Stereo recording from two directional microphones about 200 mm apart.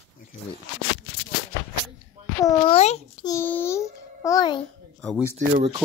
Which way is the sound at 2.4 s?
20° left (ahead or behind).